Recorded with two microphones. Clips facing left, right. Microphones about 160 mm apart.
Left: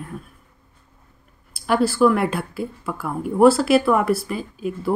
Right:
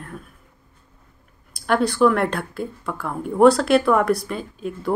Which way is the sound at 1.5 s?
5° left (ahead or behind).